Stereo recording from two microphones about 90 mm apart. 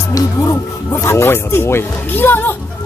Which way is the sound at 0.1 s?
35° left (ahead or behind).